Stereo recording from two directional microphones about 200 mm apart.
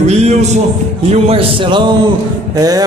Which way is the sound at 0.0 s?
35° right (ahead or behind).